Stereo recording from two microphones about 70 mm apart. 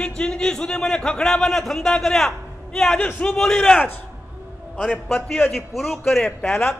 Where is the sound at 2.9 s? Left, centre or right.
Left.